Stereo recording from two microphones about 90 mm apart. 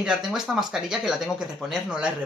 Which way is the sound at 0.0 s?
5° right (ahead or behind).